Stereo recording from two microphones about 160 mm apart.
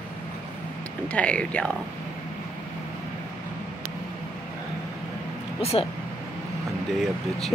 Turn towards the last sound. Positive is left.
turn(degrees=0)  # may be behind; listen again after turning